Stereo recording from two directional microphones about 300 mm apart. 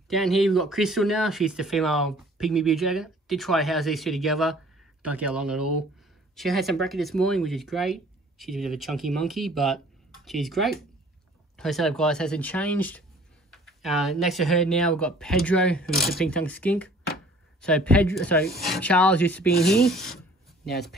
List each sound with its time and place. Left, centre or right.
0.1 s speech: centre